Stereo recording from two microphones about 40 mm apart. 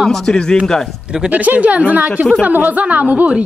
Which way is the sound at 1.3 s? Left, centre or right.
Right.